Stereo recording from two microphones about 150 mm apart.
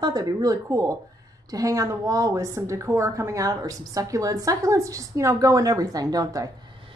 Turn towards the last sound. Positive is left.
turn(degrees=-25)  # may be behind; listen again after turning